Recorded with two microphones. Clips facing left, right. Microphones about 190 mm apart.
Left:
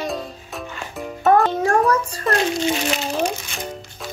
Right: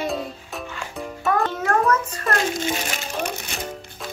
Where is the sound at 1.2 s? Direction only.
30° left (ahead or behind).